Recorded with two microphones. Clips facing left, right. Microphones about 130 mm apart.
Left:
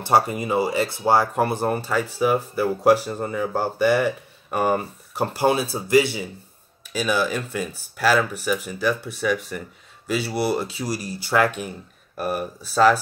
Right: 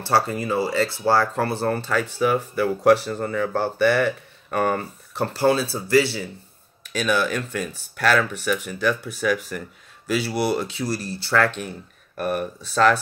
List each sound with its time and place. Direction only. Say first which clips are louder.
0.0 s speech: left 2 dB; 20° left (ahead or behind)
6.9 s speech: even; 5° left (ahead or behind)